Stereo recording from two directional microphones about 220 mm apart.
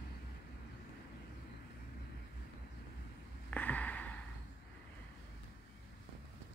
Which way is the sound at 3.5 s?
5° left (ahead or behind).